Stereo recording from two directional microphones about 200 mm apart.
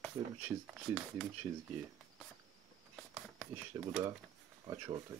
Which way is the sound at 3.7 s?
20° right (ahead or behind).